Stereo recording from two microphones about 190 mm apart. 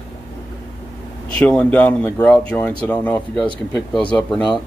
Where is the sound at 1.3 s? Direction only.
5° left (ahead or behind).